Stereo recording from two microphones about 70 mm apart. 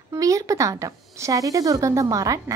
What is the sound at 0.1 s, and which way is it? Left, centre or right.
A woman's voice, right.